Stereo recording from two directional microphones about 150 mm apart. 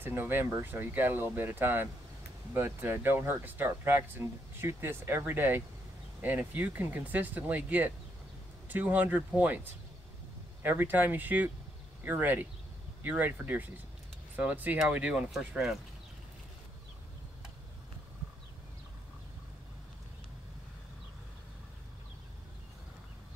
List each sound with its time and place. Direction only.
0.0 s speech: 15° right (ahead or behind)